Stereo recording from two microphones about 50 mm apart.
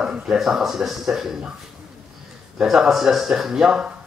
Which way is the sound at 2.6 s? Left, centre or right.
Centre.